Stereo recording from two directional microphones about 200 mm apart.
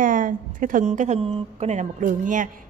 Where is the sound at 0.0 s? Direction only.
40° right (ahead or behind).